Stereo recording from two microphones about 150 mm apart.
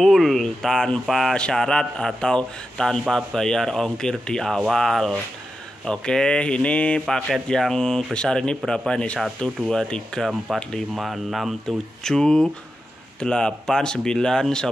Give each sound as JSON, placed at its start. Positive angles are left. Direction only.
{"t": 0.0, "sound": "speech", "side_deg": 0}